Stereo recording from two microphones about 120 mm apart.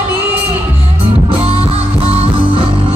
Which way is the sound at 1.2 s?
55° right (ahead or behind).